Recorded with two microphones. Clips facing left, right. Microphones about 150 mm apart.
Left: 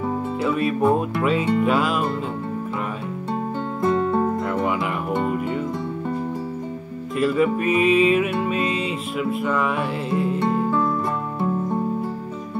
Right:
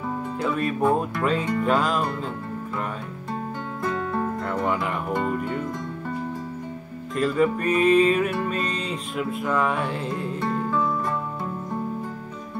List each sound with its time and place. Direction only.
0.4 s music: 5° left (ahead or behind)
3.8 s music: 25° left (ahead or behind)
4.5 s music: 5° left (ahead or behind)
7.2 s music: 5° left (ahead or behind)